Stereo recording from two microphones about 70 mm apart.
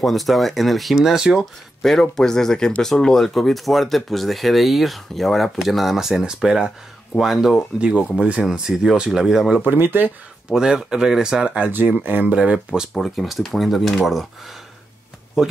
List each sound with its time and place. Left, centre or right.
0.0 s speech: centre
1.4 s speech: centre
9.6 s speech: right
10.5 s speech: centre
12.0 s speech: right
12.9 s speech: centre
15.4 s speech: centre